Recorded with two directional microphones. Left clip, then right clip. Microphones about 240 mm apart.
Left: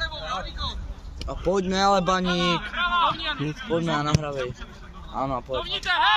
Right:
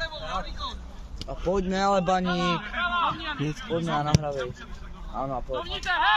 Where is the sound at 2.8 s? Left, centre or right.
Left.